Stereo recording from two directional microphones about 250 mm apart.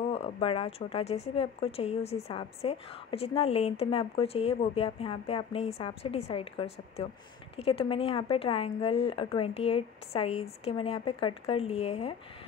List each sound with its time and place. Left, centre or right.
0.1 s speech: left